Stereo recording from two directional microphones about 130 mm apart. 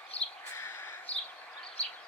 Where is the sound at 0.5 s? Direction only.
20° left (ahead or behind).